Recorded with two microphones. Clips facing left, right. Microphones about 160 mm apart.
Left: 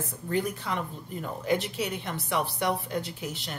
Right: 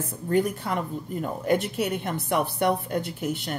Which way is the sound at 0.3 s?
50° right (ahead or behind).